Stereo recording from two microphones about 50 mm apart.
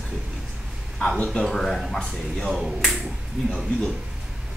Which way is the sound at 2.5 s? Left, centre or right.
Centre.